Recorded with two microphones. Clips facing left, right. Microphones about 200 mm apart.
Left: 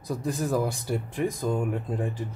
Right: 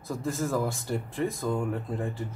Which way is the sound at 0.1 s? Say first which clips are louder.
Left 2 dB; 15° left (ahead or behind).